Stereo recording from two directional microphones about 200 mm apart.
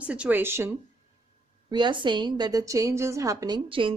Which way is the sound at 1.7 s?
25° right (ahead or behind).